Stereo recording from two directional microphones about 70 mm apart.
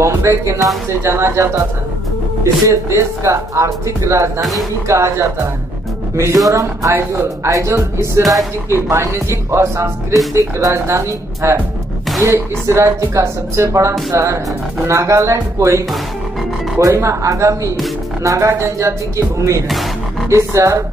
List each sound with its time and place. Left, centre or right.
0.0 s speech: right
2.7 s speech: right
4.4 s speech: centre
4.8 s speech: right
16.8 s speech: right